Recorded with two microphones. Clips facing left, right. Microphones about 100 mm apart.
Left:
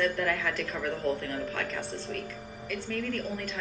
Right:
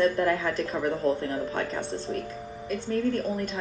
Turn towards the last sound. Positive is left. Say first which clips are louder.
# right 6 dB
turn(degrees=-30)  # may be behind; listen again after turning